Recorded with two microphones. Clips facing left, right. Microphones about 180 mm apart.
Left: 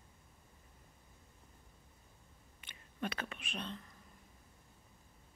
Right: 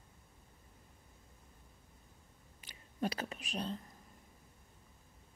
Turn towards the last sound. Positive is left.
turn(degrees=-35)  # may be behind; listen again after turning